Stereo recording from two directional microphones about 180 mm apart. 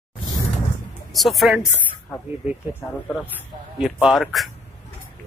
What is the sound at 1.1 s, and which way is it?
Speech, centre (ahead or behind).